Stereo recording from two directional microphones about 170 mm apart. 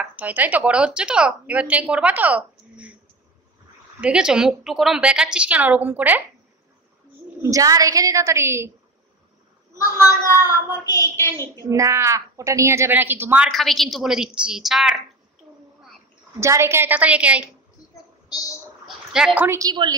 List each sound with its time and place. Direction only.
0.0 s a woman's voice: 10° right (ahead or behind)
4.0 s a woman's voice: 5° right (ahead or behind)
7.4 s a woman's voice: 20° right (ahead or behind)
10.4 s hands: 20° left (ahead or behind)
11.6 s a woman's voice: 15° right (ahead or behind)
13.5 s a woman's voice: centre (ahead or behind)
16.3 s a woman's voice: 15° right (ahead or behind)
19.1 s a woman's voice: 5° right (ahead or behind)
19.7 s a woman's voice: 25° right (ahead or behind)